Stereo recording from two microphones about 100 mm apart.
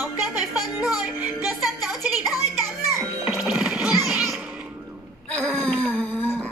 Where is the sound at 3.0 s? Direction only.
20° right (ahead or behind).